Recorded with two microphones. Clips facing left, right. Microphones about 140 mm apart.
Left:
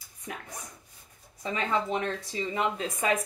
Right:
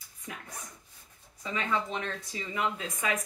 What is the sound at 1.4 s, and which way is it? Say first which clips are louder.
Speech: left 3 dB; 30° left (ahead or behind).